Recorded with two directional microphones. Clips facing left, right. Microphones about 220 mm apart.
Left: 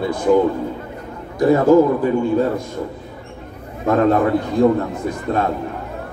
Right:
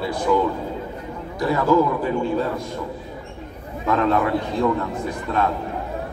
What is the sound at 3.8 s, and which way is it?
A man's voice, 45° left (ahead or behind).